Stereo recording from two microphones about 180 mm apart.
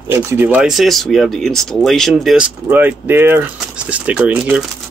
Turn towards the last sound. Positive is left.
turn(degrees=-5)  # may be behind; listen again after turning